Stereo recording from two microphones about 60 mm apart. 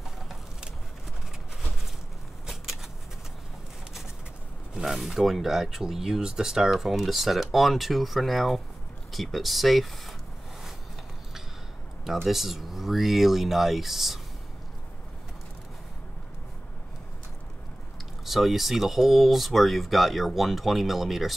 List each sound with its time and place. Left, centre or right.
2.4 s shuffling cards: centre
4.7 s speech: centre
12.0 s speech: centre
18.2 s speech: centre